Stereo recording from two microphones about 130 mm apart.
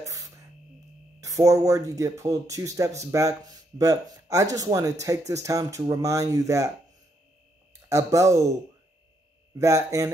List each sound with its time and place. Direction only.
1.2 s speech: 25° right (ahead or behind)
7.9 s speech: 25° right (ahead or behind)
9.6 s speech: 25° right (ahead or behind)